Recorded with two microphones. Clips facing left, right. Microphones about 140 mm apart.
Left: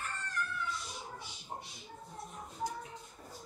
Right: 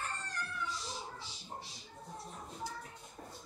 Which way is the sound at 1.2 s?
35° right (ahead or behind).